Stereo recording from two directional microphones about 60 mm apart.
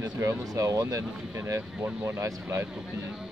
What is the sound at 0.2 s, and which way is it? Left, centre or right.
Speech, right.